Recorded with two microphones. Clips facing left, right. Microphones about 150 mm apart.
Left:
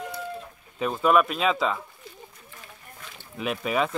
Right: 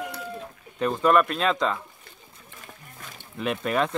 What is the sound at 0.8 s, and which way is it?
Speech, 5° left (ahead or behind).